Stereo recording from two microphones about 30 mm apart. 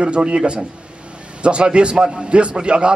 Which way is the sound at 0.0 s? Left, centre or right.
Right.